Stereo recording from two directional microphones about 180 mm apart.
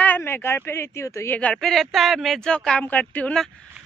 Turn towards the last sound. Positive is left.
turn(degrees=5)  # may be behind; listen again after turning